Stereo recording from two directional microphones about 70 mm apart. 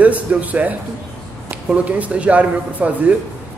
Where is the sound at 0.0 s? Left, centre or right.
Right.